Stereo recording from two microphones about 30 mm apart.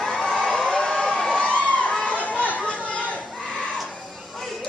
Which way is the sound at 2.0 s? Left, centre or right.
Left.